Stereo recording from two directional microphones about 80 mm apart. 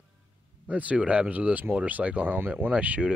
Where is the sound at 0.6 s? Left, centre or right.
Centre.